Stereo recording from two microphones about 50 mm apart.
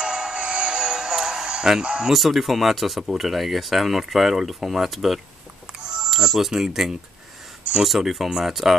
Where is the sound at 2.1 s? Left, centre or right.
Centre.